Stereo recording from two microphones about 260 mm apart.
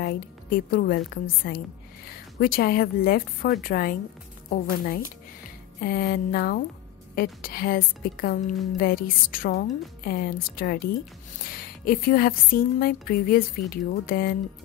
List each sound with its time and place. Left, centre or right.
0.0 s a woman's voice: left